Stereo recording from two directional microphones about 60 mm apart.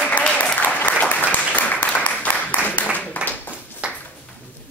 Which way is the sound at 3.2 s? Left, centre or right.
Centre.